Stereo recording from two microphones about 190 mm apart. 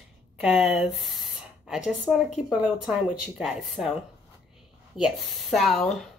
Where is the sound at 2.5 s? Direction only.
5° right (ahead or behind).